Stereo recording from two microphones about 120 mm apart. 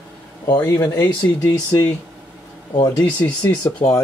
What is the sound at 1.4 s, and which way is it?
Speech, 30° left (ahead or behind).